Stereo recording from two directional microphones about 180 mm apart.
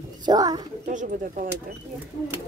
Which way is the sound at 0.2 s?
20° right (ahead or behind).